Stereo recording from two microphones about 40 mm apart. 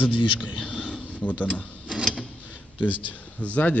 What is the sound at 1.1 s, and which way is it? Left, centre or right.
Speech, left.